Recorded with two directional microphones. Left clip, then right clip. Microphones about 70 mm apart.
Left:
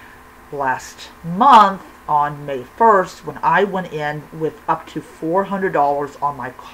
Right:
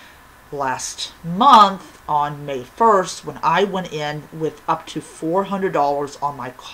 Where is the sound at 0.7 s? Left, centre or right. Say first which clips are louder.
Right 4 dB; right.